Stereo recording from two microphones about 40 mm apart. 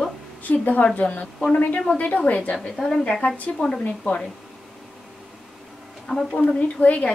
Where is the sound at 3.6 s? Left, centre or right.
Left.